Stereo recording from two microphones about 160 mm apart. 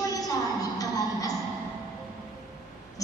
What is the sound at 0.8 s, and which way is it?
Music, 20° left (ahead or behind).